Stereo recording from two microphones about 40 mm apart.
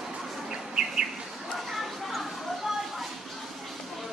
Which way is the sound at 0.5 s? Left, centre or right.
Right.